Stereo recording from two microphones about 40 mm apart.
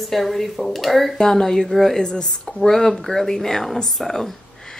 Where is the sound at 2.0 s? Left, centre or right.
Centre.